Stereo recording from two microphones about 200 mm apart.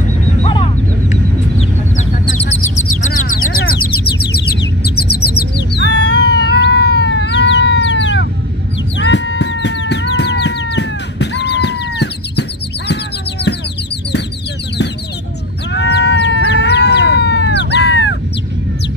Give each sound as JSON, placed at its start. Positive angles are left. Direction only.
{"t": 0.4, "sound": "a sound", "side_deg": 25}
{"t": 3.0, "sound": "bird", "side_deg": 40}
{"t": 4.2, "sound": "bird", "side_deg": 50}
{"t": 5.8, "sound": "cat", "side_deg": 60}
{"t": 8.9, "sound": "music", "side_deg": 60}
{"t": 15.7, "sound": "bleat", "side_deg": 60}